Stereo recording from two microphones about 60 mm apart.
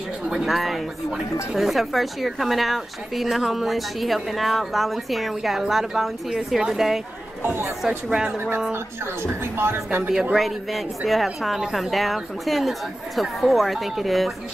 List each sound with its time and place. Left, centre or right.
0.3 s speech: centre
8.1 s speech: centre
9.2 s a woman's voice: right
10.3 s speech: centre